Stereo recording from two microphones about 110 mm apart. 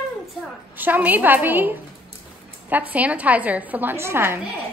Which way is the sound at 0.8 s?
15° right (ahead or behind).